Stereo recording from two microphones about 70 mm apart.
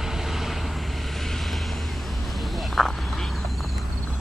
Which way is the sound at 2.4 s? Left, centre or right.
Centre.